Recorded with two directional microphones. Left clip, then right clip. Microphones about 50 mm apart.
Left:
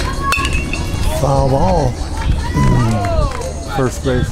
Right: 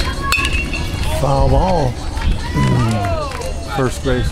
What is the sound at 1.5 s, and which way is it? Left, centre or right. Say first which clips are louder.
Speech: left 1 dB; centre.